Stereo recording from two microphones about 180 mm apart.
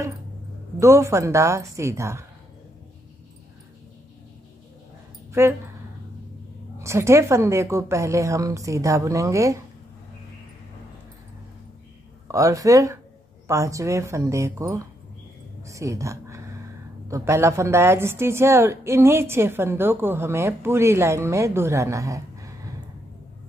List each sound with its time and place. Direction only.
0.7 s a woman's voice: 15° right (ahead or behind)
5.3 s speech: 15° right (ahead or behind)
6.8 s a woman's voice: 15° right (ahead or behind)
12.3 s a woman's voice: 20° right (ahead or behind)